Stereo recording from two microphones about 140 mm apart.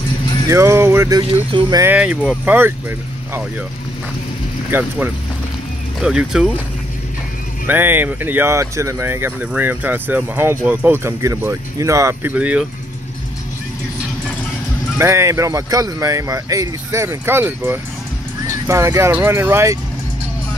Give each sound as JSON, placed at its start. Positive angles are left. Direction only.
{"t": 0.5, "sound": "speech", "side_deg": -20}
{"t": 1.9, "sound": "speech", "side_deg": -5}
{"t": 4.6, "sound": "speech", "side_deg": -15}
{"t": 5.9, "sound": "speech", "side_deg": -5}
{"t": 7.6, "sound": "speech", "side_deg": -15}
{"t": 15.0, "sound": "speech", "side_deg": -20}